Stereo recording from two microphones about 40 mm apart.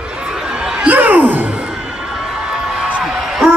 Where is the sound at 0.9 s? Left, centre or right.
Right.